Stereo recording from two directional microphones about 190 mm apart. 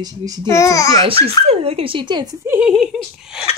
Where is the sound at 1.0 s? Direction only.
30° right (ahead or behind).